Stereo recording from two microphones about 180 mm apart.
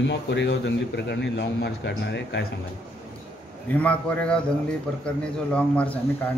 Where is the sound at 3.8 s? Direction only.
5° left (ahead or behind).